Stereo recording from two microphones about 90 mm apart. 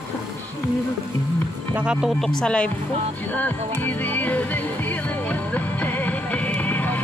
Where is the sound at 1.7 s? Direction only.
10° right (ahead or behind).